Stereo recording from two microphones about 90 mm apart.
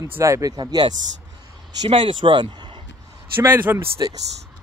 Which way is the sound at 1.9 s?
65° right (ahead or behind).